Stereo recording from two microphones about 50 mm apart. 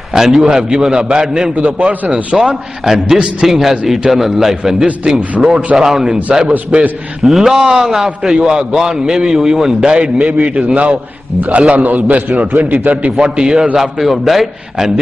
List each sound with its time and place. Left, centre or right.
0.1 s a man's voice: centre
1.6 s a man's voice: right
2.3 s a man's voice: centre
5.3 s a man's voice: right
7.2 s a man's voice: centre; by 13.1 s right
13.2 s a man's voice: centre
13.7 s a man's voice: centre